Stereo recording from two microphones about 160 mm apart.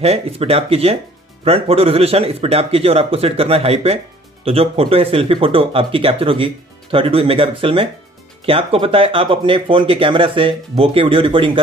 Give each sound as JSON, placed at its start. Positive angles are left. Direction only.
{"t": 0.0, "sound": "speech", "side_deg": -40}